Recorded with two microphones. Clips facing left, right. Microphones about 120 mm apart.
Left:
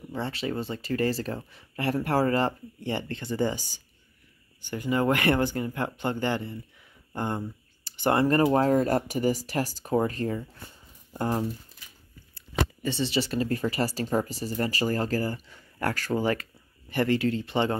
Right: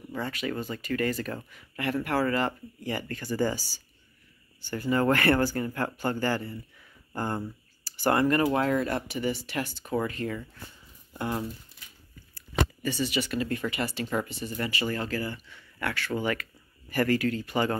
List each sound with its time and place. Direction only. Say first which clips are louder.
0.1 s speech: left 1 dB; 30° left (ahead or behind)
16.9 s speech: left 1 dB; 20° left (ahead or behind)